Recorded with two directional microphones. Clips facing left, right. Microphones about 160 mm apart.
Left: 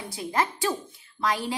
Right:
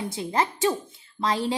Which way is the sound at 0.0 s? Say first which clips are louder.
Right 2 dB; 25° right (ahead or behind).